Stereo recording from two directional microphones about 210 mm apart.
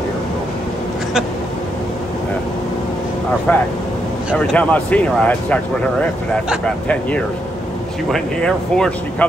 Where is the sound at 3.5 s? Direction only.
10° left (ahead or behind).